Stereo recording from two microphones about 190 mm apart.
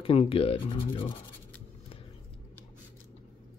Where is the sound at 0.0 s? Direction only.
30° left (ahead or behind).